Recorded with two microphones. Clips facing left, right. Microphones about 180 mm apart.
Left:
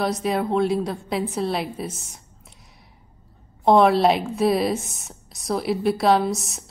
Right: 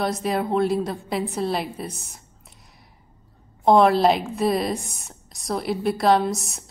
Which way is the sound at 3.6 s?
Centre (ahead or behind).